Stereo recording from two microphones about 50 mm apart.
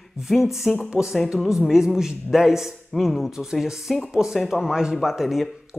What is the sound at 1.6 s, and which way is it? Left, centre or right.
Speech, centre.